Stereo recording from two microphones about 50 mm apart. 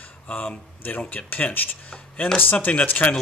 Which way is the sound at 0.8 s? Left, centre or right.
Left.